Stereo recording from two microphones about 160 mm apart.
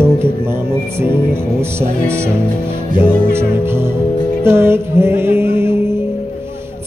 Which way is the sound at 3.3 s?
15° right (ahead or behind).